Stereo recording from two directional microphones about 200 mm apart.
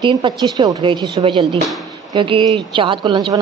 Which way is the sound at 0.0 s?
25° right (ahead or behind).